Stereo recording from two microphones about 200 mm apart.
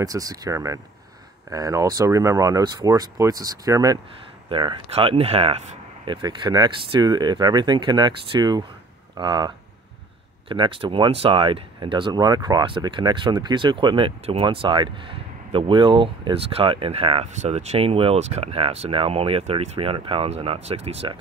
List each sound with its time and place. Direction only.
0.0 s speech: 15° right (ahead or behind)
10.5 s speech: 25° right (ahead or behind)